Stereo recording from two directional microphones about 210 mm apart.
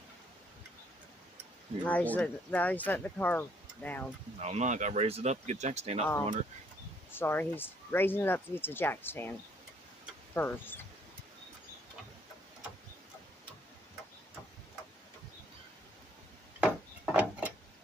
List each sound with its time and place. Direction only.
1.9 s speech: 5° left (ahead or behind)
4.4 s speech: 35° right (ahead or behind)
7.1 s speech: 10° left (ahead or behind)
10.3 s speech: 10° left (ahead or behind)
16.5 s a sound: 5° right (ahead or behind)